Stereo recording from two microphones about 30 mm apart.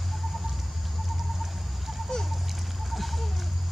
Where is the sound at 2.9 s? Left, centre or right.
Centre.